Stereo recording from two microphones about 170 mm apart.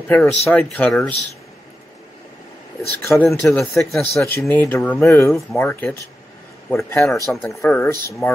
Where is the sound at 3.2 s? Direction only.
5° left (ahead or behind).